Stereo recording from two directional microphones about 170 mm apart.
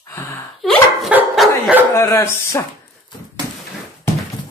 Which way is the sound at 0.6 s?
Centre (ahead or behind).